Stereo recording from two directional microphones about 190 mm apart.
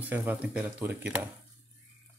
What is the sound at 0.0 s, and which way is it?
Speech, 10° right (ahead or behind).